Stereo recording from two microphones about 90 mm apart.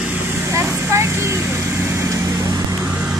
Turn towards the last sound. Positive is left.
turn(degrees=-30)  # may be behind; listen again after turning